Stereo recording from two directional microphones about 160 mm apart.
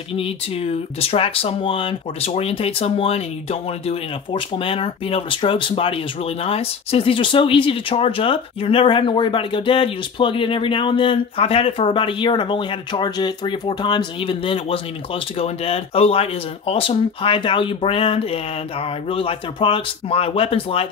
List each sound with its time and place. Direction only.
0.1 s speech: 35° left (ahead or behind)